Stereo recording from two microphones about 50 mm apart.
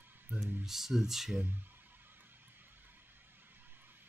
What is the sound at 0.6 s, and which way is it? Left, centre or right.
Speech, centre.